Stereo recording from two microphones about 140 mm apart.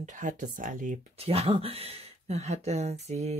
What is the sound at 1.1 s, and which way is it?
Speech, 45° right (ahead or behind).